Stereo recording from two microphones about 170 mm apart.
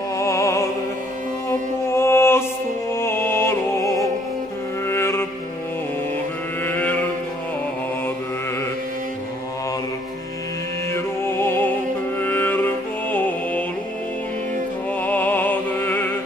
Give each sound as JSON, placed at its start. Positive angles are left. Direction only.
{"t": 0.2, "sound": "music", "side_deg": 15}
{"t": 1.9, "sound": "mantra", "side_deg": 15}
{"t": 2.9, "sound": "music", "side_deg": 15}
{"t": 6.6, "sound": "mantra", "side_deg": 10}
{"t": 11.2, "sound": "music", "side_deg": 15}
{"t": 15.0, "sound": "music", "side_deg": 10}